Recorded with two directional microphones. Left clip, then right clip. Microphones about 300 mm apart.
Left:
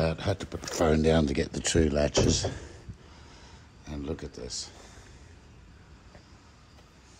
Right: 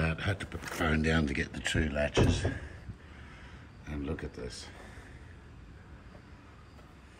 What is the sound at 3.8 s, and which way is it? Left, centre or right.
Speech, centre.